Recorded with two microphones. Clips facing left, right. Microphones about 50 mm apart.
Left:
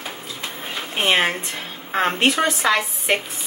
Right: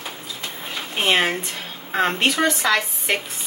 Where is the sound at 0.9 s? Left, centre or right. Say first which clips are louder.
Even; centre.